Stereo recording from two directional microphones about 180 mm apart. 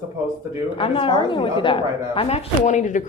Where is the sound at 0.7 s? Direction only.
30° left (ahead or behind).